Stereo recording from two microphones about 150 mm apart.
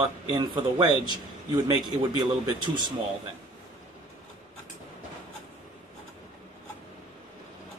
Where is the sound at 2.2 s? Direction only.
30° right (ahead or behind).